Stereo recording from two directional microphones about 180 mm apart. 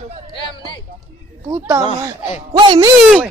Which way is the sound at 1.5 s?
25° right (ahead or behind).